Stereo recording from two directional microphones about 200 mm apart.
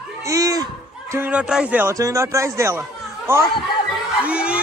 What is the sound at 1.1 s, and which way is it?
A man's voice, 5° right (ahead or behind).